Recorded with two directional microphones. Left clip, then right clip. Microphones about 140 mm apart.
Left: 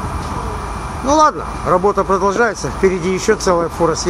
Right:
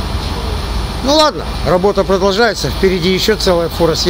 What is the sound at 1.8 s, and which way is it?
Speech, 30° right (ahead or behind).